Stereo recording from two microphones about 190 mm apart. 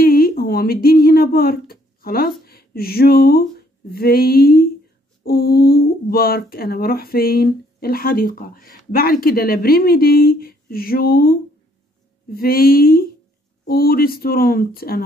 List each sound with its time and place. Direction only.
0.0 s a sound: 50° left (ahead or behind)
2.4 s speech: 55° left (ahead or behind)
12.4 s speech: 50° left (ahead or behind)